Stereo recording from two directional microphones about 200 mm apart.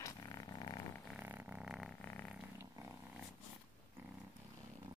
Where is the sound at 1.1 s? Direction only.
10° right (ahead or behind).